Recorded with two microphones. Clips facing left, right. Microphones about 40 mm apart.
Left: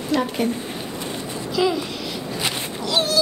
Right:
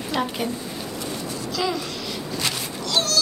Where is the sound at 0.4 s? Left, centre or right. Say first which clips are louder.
Left 4 dB; left.